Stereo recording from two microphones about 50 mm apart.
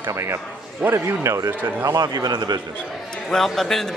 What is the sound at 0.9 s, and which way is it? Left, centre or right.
Speech, right.